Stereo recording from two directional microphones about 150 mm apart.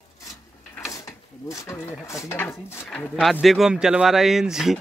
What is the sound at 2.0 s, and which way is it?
Speech, 20° left (ahead or behind).